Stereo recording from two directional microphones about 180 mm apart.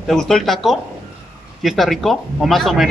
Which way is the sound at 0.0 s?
5° left (ahead or behind).